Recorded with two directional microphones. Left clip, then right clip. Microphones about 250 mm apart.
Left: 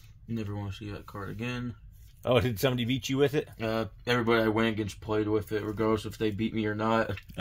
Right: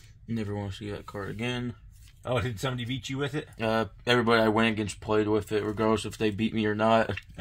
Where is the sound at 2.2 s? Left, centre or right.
Left.